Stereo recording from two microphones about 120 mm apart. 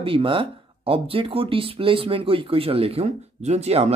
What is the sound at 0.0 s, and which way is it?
Speech, 50° right (ahead or behind).